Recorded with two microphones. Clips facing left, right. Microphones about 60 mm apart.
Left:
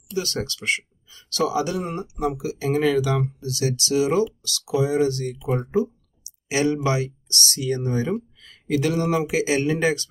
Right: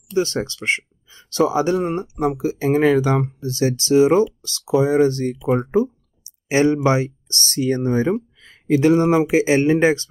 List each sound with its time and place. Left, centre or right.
0.1 s speech: right